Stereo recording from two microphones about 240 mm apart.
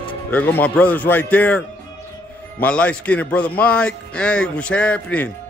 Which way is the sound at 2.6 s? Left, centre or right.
Centre.